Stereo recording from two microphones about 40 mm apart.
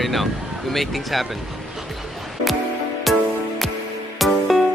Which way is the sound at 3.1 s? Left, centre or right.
Centre.